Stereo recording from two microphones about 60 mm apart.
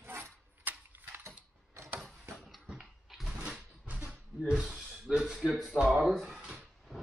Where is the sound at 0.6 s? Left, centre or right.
Right.